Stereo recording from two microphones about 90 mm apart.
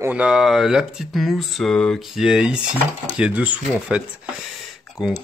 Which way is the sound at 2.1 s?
5° right (ahead or behind).